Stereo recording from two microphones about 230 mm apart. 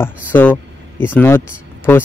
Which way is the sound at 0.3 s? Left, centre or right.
Centre.